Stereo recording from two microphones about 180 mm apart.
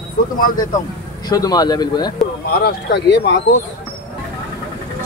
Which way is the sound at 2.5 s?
65° left (ahead or behind).